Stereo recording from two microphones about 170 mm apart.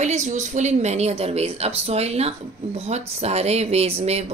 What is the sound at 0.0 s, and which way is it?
A woman's voice, 45° right (ahead or behind).